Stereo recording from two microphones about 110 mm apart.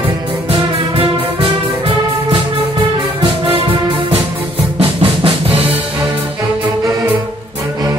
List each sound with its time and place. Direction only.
0.5 s music: 55° right (ahead or behind)
4.7 s drum: 55° right (ahead or behind)